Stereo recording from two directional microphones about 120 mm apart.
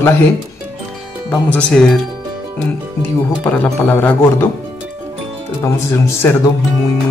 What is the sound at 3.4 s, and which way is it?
Music, 10° left (ahead or behind).